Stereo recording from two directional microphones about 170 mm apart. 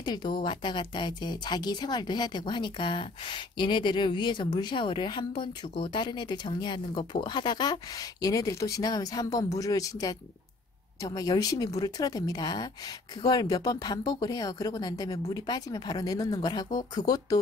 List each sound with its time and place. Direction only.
0.0 s speech: 25° left (ahead or behind)